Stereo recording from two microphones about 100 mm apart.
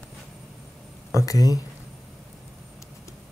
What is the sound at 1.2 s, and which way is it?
Speech, 35° left (ahead or behind).